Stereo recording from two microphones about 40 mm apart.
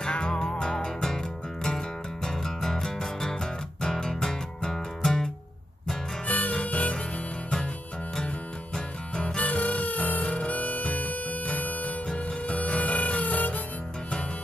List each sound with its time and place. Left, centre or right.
0.0 s music: left
6.2 s harmonica: left
9.4 s music: left